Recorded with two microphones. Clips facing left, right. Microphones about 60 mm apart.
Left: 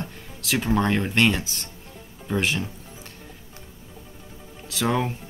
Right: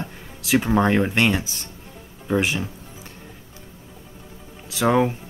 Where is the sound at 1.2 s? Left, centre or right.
Centre.